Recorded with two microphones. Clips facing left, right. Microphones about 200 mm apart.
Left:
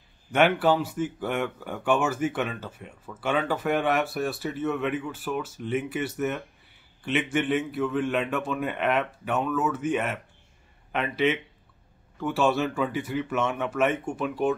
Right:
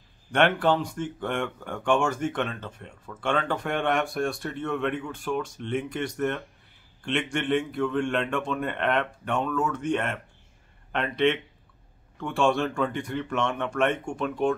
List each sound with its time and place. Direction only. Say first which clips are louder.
0.3 s speech: left 1 dB; 5° left (ahead or behind)